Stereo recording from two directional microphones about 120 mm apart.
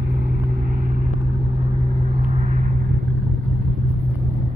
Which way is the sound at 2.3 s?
85° right.